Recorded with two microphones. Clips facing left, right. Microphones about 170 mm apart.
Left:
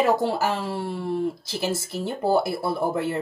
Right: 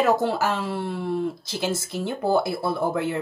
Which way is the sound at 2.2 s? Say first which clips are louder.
Even; 5° left (ahead or behind).